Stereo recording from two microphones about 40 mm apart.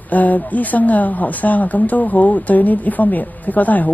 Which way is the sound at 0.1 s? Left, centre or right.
Left.